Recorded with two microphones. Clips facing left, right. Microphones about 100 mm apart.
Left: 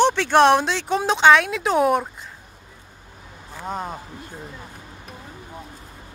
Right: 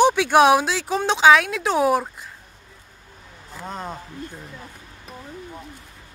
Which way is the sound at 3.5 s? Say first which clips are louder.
Left 3 dB; 10° left (ahead or behind).